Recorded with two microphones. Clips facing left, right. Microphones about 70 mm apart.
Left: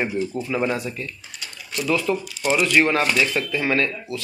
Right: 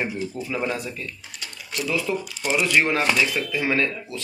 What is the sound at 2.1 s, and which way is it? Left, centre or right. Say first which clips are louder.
Speech: left 3 dB; centre.